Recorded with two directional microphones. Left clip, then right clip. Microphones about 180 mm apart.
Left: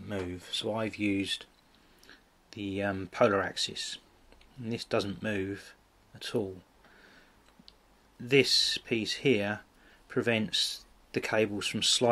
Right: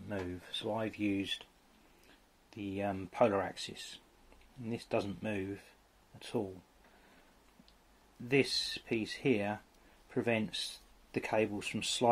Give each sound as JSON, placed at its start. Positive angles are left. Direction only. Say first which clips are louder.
{"t": 0.1, "sound": "speech", "louder": "left 5 dB", "side_deg": 15}
{"t": 2.5, "sound": "speech", "louder": "left 5 dB", "side_deg": 15}
{"t": 8.3, "sound": "speech", "louder": "left 7 dB", "side_deg": 15}